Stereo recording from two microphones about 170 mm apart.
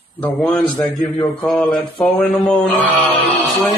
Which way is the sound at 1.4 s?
10° left (ahead or behind).